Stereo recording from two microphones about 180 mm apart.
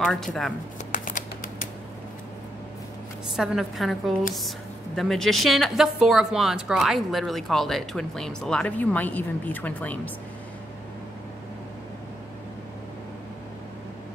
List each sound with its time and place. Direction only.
0.0 s a woman's voice: centre (ahead or behind)
0.9 s a sound: 50° left (ahead or behind)
3.3 s a woman's voice: centre (ahead or behind)